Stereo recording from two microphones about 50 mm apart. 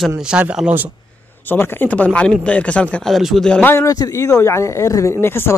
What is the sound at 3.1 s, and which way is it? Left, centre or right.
Speech, centre.